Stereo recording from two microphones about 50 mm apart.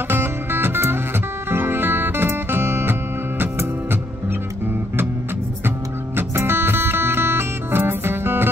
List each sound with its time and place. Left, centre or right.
0.1 s music: right
6.1 s music: right